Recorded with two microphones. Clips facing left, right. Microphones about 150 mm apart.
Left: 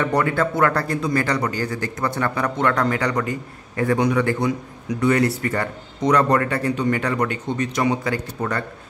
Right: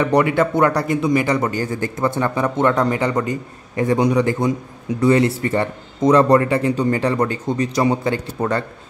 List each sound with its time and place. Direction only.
0.0 s a man's voice: 15° right (ahead or behind)